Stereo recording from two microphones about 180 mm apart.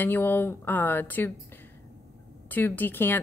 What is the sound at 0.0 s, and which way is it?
A woman's voice, 10° left (ahead or behind).